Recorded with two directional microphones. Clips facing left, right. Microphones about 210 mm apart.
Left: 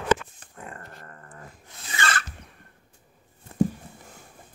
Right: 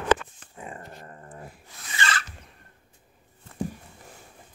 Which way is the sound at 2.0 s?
50° left (ahead or behind).